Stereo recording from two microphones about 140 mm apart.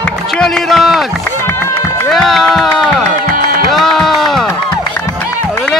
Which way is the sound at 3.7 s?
Centre (ahead or behind).